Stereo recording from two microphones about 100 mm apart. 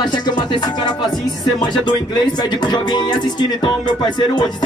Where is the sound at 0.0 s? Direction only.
45° left (ahead or behind).